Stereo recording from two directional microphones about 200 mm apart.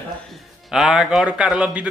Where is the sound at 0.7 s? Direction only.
Centre (ahead or behind).